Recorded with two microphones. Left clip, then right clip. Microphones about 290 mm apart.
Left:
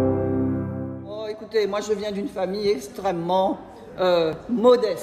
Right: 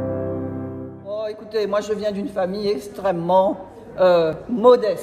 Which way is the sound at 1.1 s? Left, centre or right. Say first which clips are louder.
Right 1 dB; centre.